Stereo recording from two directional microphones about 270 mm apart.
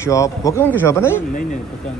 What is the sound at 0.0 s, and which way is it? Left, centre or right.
Speech, centre.